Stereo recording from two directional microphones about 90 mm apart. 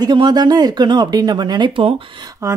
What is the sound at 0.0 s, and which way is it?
Speech, 55° right (ahead or behind).